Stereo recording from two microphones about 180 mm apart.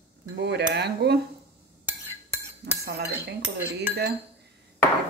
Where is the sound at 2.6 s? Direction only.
65° right (ahead or behind).